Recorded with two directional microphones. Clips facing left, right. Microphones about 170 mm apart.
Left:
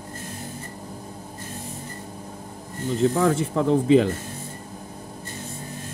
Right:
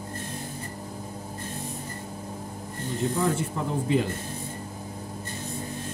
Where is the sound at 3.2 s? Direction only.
90° left.